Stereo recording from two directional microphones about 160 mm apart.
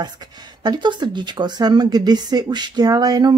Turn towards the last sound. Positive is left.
turn(degrees=-25)  # may be behind; listen again after turning